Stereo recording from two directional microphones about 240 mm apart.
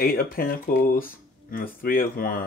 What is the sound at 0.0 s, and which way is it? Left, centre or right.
Speech, left.